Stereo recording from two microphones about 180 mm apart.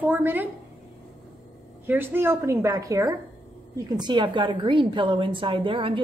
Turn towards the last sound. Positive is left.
turn(degrees=-30)  # may be behind; listen again after turning